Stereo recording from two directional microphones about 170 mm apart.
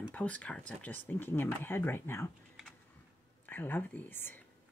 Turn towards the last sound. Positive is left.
turn(degrees=10)  # may be behind; listen again after turning